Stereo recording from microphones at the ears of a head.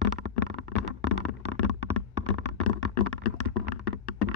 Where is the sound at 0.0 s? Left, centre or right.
Left.